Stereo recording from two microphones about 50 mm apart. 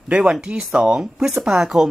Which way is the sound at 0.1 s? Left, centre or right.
Right.